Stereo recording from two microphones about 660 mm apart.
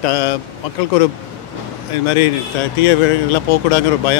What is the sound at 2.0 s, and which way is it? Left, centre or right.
Speech, left.